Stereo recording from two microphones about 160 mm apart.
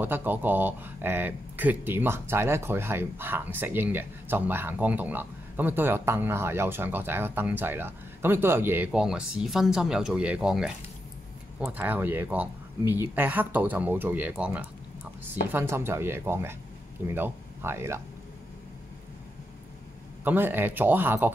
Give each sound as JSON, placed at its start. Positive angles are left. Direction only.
{"t": 0.0, "sound": "speech", "side_deg": -10}
{"t": 20.2, "sound": "speech", "side_deg": -10}